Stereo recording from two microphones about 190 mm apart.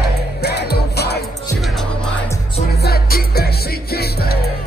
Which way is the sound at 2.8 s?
55° left (ahead or behind).